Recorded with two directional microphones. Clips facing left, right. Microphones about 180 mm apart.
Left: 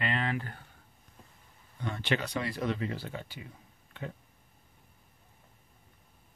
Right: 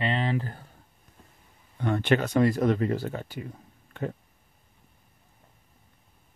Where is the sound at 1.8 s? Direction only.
55° right (ahead or behind).